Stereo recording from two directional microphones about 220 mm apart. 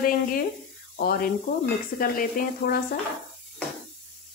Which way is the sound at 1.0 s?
45° left (ahead or behind).